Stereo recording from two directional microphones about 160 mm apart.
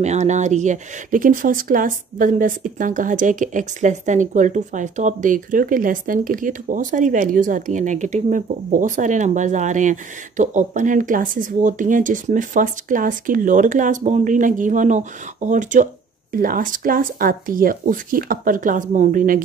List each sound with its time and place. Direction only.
0.0 s speech: 45° right (ahead or behind)